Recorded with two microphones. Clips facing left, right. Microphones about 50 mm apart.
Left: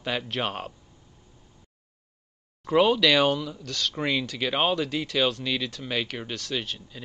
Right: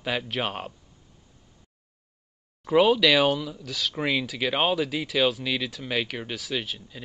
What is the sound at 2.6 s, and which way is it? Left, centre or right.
Speech, centre.